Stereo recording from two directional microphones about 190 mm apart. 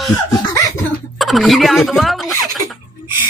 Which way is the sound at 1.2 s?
Centre (ahead or behind).